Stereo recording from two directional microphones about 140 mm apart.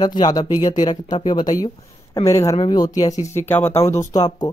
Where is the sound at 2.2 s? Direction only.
20° left (ahead or behind).